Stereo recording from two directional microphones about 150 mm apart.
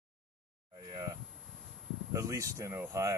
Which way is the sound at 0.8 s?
25° right (ahead or behind).